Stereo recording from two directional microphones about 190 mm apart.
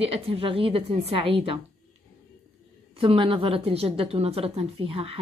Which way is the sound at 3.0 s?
30° right (ahead or behind).